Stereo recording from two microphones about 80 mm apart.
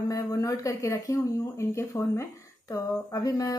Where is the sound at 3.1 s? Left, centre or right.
Left.